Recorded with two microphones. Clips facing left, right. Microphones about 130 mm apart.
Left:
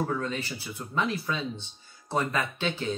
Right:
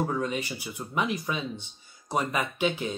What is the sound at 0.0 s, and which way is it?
Speech, 15° right (ahead or behind).